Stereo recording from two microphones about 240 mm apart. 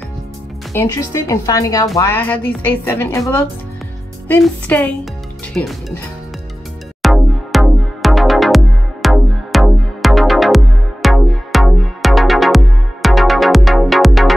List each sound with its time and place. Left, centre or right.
0.7 s a woman's voice: centre
7.0 s music: centre